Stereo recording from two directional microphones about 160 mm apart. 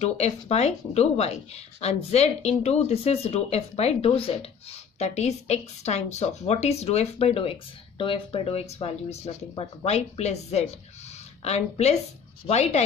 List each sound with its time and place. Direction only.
0.0 s speech: 40° left (ahead or behind)